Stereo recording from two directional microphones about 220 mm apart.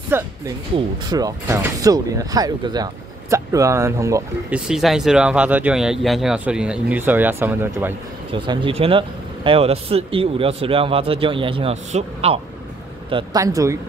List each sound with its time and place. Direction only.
0.1 s speech: 10° right (ahead or behind)
4.6 s speech: centre (ahead or behind)
8.3 s speech: 20° right (ahead or behind)
13.1 s speech: 15° right (ahead or behind)